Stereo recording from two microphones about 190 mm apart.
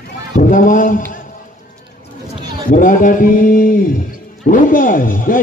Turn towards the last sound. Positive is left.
turn(degrees=45)  # may be behind; listen again after turning